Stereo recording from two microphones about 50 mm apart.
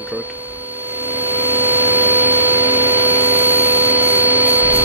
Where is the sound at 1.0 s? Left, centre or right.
Right.